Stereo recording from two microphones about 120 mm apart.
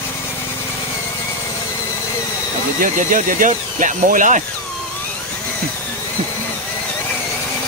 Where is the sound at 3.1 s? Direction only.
90° right.